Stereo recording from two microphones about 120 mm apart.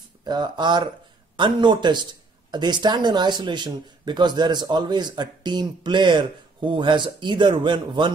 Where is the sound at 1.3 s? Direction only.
40° right (ahead or behind).